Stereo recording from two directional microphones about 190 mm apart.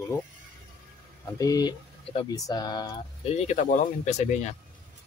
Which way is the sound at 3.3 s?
35° left (ahead or behind).